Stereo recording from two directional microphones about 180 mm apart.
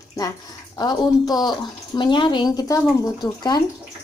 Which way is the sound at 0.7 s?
20° left (ahead or behind).